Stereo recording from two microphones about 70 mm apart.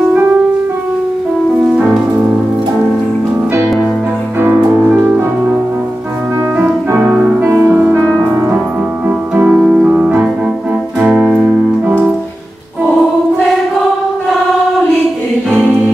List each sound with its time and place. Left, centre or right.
4.4 s music: right
7.0 s music: right
9.0 s music: right
9.5 s music: centre
9.8 s keyboard: centre
11.3 s keyboard: right